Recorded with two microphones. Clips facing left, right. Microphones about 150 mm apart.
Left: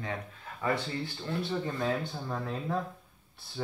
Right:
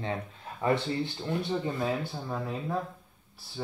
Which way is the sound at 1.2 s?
15° right (ahead or behind).